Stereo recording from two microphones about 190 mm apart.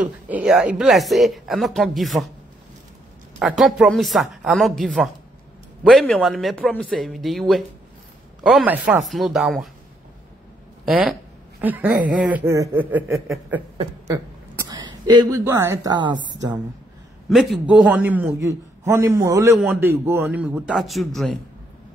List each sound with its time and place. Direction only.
0.0 s speech: 5° right (ahead or behind)
3.3 s speech: centre (ahead or behind)
10.9 s a man's voice: centre (ahead or behind)
14.6 s speech: 20° right (ahead or behind)
17.3 s a man's voice: centre (ahead or behind)